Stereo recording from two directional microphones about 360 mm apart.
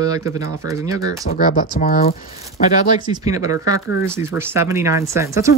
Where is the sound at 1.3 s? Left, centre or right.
Left.